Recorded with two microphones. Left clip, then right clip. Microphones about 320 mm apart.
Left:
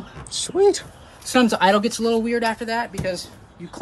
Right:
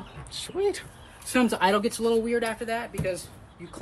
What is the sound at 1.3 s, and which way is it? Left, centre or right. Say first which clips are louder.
Speech: left 6 dB; left.